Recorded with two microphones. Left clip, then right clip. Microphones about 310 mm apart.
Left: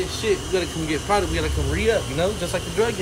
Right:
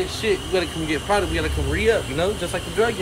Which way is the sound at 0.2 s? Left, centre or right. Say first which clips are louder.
Right 1 dB; centre.